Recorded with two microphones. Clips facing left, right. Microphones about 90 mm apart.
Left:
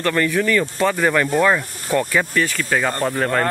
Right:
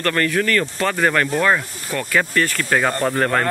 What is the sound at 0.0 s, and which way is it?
Speech, 10° left (ahead or behind).